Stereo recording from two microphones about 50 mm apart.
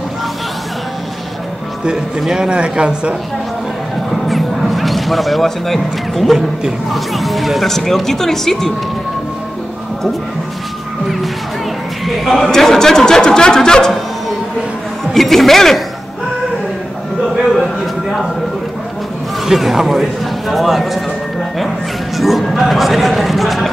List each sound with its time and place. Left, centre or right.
1.9 s a man's voice: centre
4.1 s music: centre
6.9 s speech: centre
12.1 s speech: centre
15.1 s speech: centre
17.4 s a sound: centre
19.4 s speech: centre
22.1 s speech: centre